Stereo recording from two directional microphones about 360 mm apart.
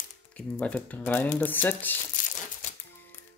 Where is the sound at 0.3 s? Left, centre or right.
Centre.